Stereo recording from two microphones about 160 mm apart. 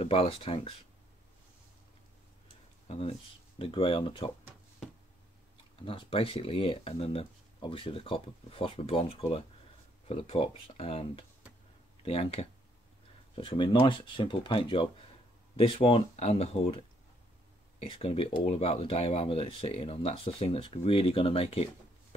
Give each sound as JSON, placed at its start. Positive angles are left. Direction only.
{"t": 0.0, "sound": "speech", "side_deg": 35}
{"t": 2.9, "sound": "speech", "side_deg": 35}
{"t": 5.9, "sound": "speech", "side_deg": 35}